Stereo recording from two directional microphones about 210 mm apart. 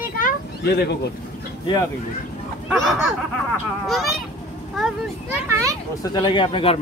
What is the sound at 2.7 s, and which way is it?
Speech, centre (ahead or behind).